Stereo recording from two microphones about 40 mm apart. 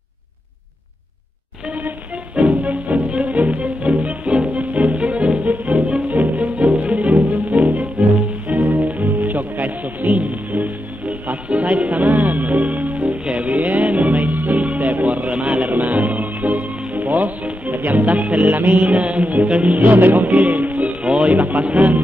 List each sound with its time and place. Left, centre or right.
2.3 s music: right
11.4 s music: right
13.2 s music: right
20.2 s music: right